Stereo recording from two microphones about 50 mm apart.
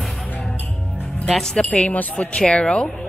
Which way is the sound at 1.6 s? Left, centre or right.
Left.